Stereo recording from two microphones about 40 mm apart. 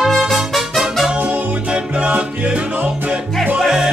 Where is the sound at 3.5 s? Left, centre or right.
Centre.